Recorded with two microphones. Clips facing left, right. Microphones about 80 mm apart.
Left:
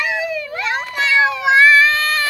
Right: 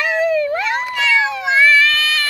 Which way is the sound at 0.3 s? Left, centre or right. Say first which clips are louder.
Right 8 dB; right.